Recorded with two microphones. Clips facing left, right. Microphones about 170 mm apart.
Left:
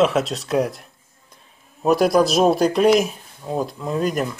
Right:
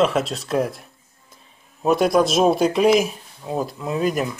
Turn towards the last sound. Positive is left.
turn(degrees=-5)  # may be behind; listen again after turning